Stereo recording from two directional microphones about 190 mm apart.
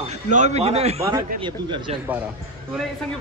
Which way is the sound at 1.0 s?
20° right (ahead or behind).